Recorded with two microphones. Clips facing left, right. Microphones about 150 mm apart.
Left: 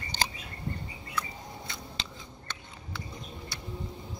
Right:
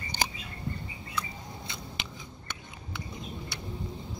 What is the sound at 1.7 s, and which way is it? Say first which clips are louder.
Scissors: right 1 dB; 15° right (ahead or behind).